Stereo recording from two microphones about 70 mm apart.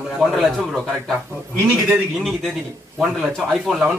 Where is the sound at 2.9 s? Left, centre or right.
Centre.